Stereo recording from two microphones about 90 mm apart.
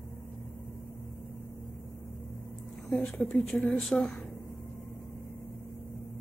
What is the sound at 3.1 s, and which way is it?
Speech, 20° left (ahead or behind).